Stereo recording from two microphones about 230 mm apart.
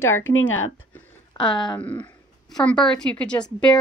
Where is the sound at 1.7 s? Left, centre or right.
Centre.